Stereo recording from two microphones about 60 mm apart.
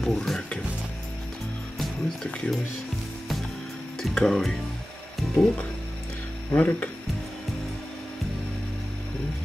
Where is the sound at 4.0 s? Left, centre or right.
Centre.